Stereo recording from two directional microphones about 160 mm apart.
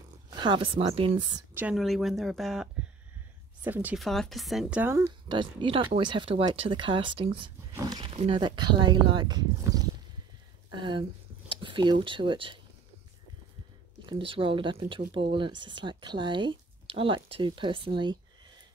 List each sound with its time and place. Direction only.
0.3 s speech: 30° right (ahead or behind)
1.5 s a woman's voice: 10° right (ahead or behind)
1.8 s speech: centre (ahead or behind)
3.6 s speech: 10° right (ahead or behind)
4.0 s speech: centre (ahead or behind)
4.9 s speech: 20° right (ahead or behind)
5.4 s speech: 30° right (ahead or behind)
7.7 s wild animals: 25° right (ahead or behind)
8.2 s speech: 30° right (ahead or behind)
14.0 s speech: 30° right (ahead or behind)